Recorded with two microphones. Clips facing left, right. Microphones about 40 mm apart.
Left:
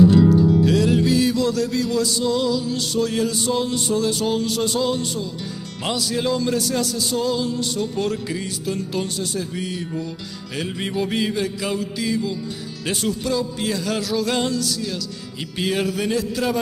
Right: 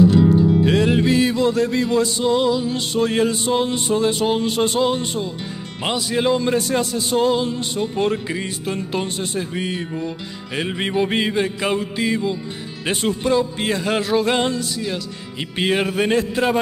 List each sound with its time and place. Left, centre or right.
0.3 s speech: right